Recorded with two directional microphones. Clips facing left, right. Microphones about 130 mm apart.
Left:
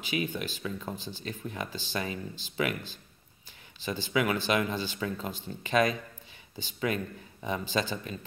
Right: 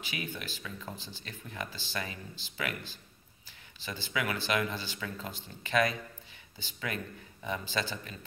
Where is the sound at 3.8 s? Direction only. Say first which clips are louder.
Left 6 dB; 20° left (ahead or behind).